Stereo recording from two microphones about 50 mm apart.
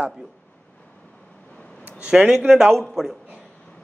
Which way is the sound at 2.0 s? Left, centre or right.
Right.